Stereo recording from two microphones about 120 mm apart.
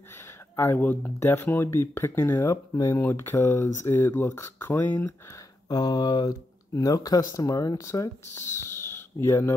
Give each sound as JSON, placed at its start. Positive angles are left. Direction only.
{"t": 0.6, "sound": "speech", "side_deg": 15}
{"t": 5.7, "sound": "speech", "side_deg": 35}